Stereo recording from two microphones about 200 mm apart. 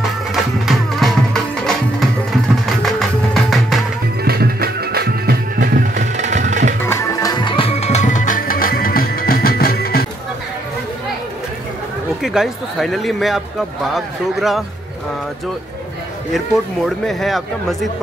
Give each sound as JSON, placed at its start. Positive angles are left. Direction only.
{"t": 0.3, "sound": "music", "side_deg": 0}
{"t": 4.2, "sound": "music", "side_deg": -50}
{"t": 6.9, "sound": "music", "side_deg": 15}
{"t": 12.2, "sound": "speech", "side_deg": 0}
{"t": 16.3, "sound": "speech", "side_deg": 0}